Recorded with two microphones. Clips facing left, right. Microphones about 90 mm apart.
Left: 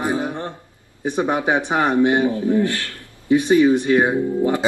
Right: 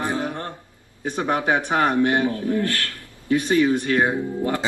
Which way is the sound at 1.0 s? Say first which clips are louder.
Left 2 dB; 20° left (ahead or behind).